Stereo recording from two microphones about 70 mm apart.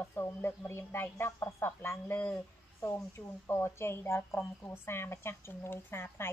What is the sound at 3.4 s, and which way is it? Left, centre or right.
A woman's voice, left.